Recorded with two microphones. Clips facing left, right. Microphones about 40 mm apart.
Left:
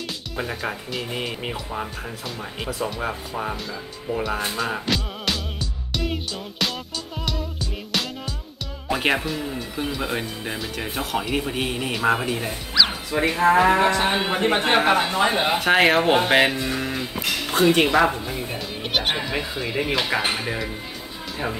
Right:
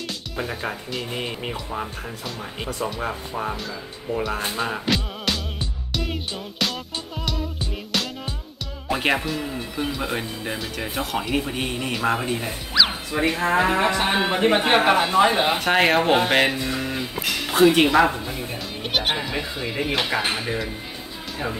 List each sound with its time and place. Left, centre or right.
0.4 s speech: centre
4.6 s music: centre
8.8 s speech: centre